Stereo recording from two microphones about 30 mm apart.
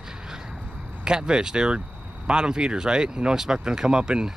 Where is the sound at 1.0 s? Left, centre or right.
Right.